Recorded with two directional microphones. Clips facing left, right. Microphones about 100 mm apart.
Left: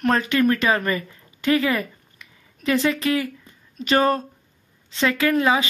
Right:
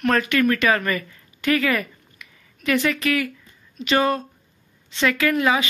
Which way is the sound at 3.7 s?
40° left (ahead or behind).